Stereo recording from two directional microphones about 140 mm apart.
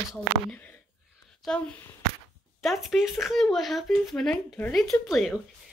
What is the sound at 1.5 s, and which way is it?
Speech, 5° left (ahead or behind).